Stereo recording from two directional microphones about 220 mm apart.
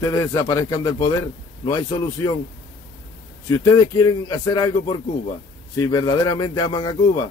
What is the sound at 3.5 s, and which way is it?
A man's voice, 15° left (ahead or behind).